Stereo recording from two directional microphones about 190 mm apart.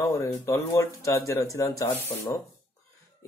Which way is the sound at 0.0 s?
15° left (ahead or behind).